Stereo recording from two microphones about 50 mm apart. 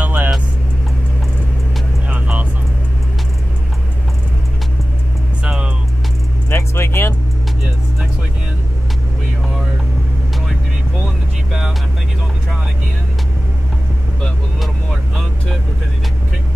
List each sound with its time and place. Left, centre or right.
0.0 s vehicle: right
2.0 s vehicle: right
5.4 s music: right
6.5 s vehicle: left
14.6 s vehicle: centre